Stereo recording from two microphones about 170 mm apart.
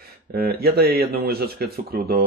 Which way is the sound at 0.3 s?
65° right (ahead or behind).